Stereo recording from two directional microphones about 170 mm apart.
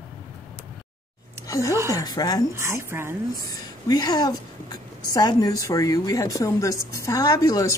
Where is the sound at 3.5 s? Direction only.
25° left (ahead or behind).